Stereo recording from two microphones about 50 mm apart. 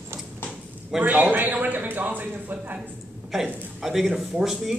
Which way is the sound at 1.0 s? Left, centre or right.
Right.